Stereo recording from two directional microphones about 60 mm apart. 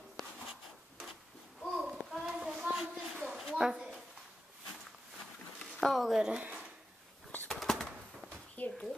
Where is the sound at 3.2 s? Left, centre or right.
Centre.